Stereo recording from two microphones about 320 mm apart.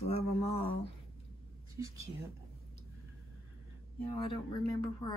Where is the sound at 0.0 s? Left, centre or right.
Centre.